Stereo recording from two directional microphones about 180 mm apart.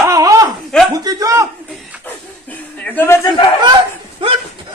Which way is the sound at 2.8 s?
10° left (ahead or behind).